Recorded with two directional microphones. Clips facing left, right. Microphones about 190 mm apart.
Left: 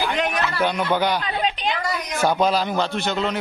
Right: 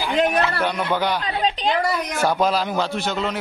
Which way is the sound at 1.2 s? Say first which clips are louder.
Right 2 dB; 35° right (ahead or behind).